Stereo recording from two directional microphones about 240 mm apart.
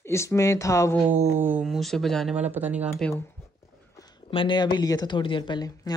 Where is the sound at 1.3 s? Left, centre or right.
Centre.